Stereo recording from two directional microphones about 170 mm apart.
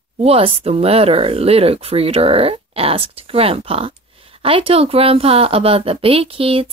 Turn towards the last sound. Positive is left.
turn(degrees=-35)  # may be behind; listen again after turning